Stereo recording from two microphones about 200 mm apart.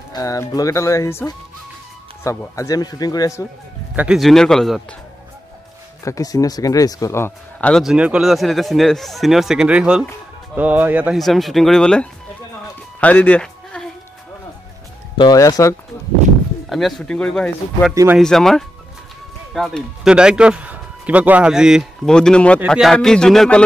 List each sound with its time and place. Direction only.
0.1 s a man's voice: 15° left (ahead or behind)
3.9 s speech: 5° right (ahead or behind)
6.0 s speech: 15° left (ahead or behind)
13.0 s sheep: 10° left (ahead or behind)
15.1 s a man's voice: 20° left (ahead or behind)
16.6 s speech: centre (ahead or behind)
17.9 s speech: 10° right (ahead or behind)
18.2 s a man's voice: centre (ahead or behind)